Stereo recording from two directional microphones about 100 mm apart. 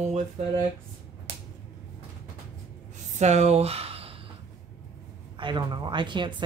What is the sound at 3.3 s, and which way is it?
Speech, 90° right.